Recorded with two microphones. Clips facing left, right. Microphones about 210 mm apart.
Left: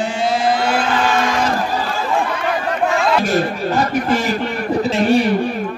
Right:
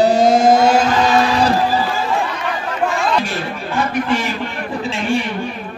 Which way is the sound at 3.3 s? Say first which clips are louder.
Left 6 dB; 40° left (ahead or behind).